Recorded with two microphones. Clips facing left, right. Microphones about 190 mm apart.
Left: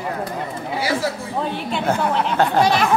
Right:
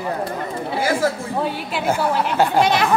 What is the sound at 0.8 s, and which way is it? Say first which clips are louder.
Speech: right 2 dB; 50° right (ahead or behind).